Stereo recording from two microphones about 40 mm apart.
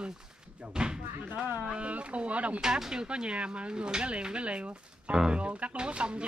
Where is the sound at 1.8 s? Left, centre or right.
Right.